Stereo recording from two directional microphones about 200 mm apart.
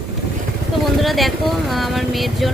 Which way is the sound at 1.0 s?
Centre (ahead or behind).